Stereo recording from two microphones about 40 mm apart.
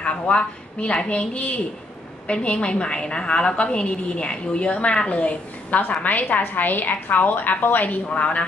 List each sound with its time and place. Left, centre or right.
0.0 s a woman's voice: left
6.1 s a woman's voice: left
8.1 s a woman's voice: left